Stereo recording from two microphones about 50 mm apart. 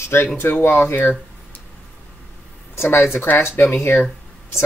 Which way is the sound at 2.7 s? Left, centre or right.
Left.